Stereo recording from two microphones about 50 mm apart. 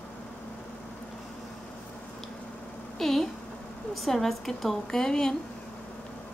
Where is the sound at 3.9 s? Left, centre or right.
Centre.